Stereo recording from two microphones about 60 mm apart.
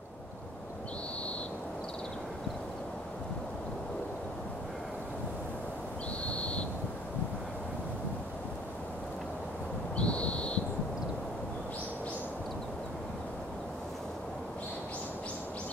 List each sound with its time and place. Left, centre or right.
6.2 s owl: centre
9.9 s owl: centre